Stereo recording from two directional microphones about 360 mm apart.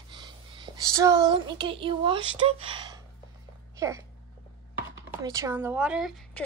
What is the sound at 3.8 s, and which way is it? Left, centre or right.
Speech, centre.